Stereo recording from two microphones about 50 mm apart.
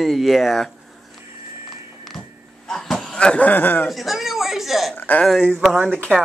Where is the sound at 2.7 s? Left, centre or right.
Centre.